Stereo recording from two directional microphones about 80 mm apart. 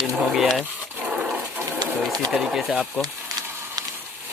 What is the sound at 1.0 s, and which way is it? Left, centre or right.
Dog, centre.